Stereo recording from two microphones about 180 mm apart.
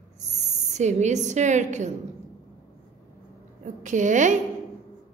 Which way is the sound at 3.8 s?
45° right (ahead or behind).